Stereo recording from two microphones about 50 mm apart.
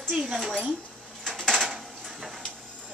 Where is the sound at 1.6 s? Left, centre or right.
Centre.